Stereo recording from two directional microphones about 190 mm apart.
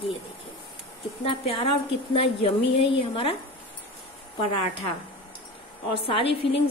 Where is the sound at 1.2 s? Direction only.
30° left (ahead or behind).